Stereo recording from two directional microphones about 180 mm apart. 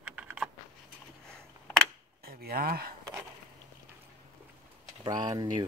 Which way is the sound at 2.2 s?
55° right (ahead or behind).